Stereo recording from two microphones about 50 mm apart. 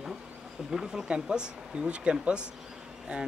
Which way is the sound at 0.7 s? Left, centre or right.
Centre.